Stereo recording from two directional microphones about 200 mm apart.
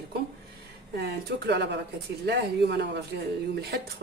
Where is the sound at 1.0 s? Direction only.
55° right (ahead or behind).